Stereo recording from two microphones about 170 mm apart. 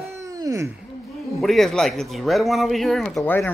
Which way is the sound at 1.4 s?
Centre (ahead or behind).